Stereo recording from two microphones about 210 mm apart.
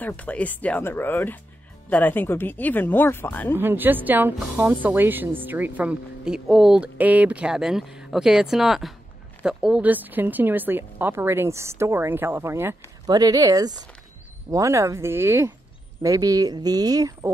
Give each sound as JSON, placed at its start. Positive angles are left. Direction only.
{"t": 0.0, "sound": "speech", "side_deg": 5}
{"t": 3.5, "sound": "a woman's voice", "side_deg": -10}